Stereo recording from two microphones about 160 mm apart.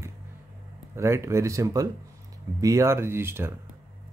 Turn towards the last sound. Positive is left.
turn(degrees=-15)  # may be behind; listen again after turning